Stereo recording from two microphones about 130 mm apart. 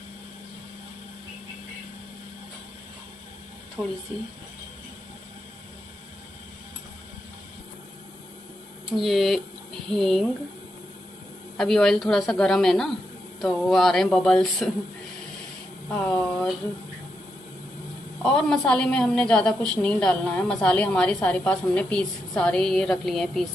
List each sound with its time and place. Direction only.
8.9 s a woman's voice: centre (ahead or behind)
11.5 s a woman's voice: 5° left (ahead or behind)
15.9 s a woman's voice: 10° left (ahead or behind)
18.2 s a woman's voice: 5° left (ahead or behind)